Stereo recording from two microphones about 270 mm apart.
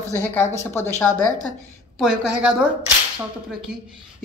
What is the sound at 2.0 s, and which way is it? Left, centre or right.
A man's voice, centre.